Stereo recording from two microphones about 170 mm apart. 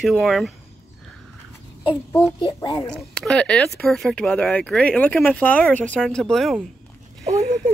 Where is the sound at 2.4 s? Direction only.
25° left (ahead or behind).